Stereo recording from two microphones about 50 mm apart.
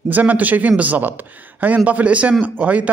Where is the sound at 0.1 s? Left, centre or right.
Right.